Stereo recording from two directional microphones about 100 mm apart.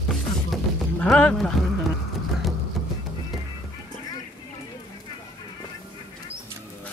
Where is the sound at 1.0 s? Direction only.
5° left (ahead or behind).